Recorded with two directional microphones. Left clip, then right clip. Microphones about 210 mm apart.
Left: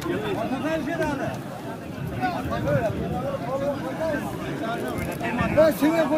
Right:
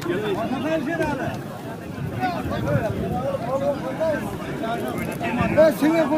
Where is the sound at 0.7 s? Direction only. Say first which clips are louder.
Right 3 dB; 10° left (ahead or behind).